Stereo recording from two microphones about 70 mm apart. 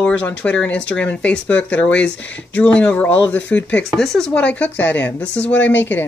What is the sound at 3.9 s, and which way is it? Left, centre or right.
Speech, centre.